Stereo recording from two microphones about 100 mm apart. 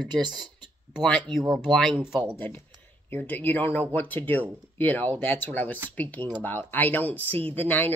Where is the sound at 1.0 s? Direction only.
5° left (ahead or behind).